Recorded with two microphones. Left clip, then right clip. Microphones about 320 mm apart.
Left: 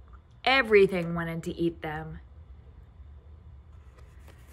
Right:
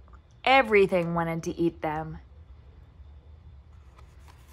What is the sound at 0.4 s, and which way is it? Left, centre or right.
A woman's voice, centre.